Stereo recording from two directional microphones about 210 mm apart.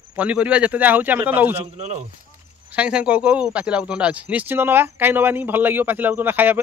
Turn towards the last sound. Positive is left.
turn(degrees=-10)  # may be behind; listen again after turning